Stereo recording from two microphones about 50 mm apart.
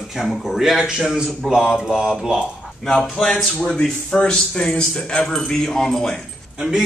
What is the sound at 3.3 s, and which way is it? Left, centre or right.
A man's voice, centre.